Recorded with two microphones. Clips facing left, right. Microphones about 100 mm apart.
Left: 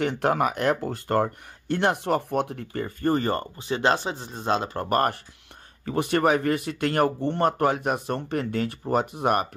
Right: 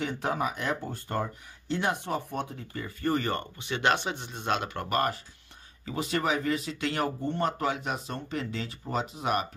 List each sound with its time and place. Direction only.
0.0 s speech: 65° left (ahead or behind); by 5.1 s 40° left (ahead or behind)
5.9 s speech: 55° left (ahead or behind)